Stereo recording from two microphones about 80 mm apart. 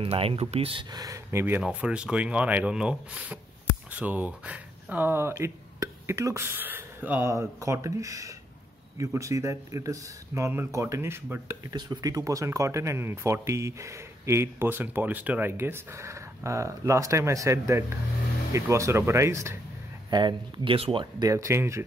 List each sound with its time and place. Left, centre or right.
0.0 s speech: right
1.0 s speech: right
1.6 s speech: centre
5.3 s speech: right
7.2 s speech: right
11.7 s speech: right
20.1 s speech: right
21.3 s speech: right